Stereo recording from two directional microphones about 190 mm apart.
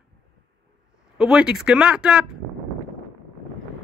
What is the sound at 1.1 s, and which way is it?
Speech, 5° right (ahead or behind).